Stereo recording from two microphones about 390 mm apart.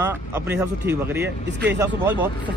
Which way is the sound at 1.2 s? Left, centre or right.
Right.